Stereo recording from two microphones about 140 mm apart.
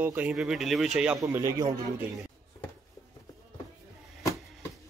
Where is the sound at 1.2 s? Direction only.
20° right (ahead or behind).